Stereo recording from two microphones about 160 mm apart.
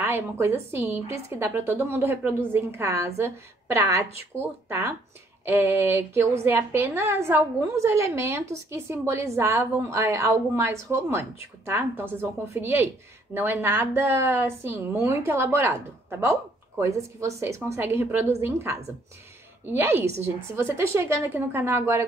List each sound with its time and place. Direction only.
0.1 s a woman's voice: 15° right (ahead or behind)
19.6 s a woman's voice: 15° right (ahead or behind)